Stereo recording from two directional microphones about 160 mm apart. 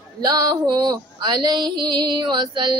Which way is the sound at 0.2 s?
25° right (ahead or behind).